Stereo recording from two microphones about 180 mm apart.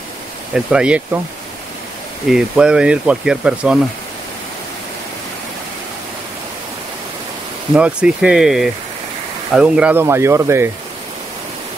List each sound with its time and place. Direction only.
0.5 s speech: 5° right (ahead or behind)
2.2 s speech: 5° right (ahead or behind)
7.7 s speech: 5° right (ahead or behind)